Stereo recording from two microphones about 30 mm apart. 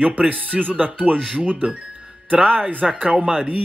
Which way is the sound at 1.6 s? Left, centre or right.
Right.